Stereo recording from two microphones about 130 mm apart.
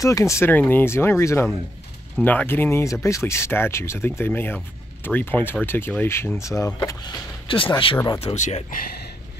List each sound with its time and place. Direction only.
0.0 s speech: 25° left (ahead or behind)
7.4 s speech: 40° left (ahead or behind)
8.4 s speech: 65° left (ahead or behind)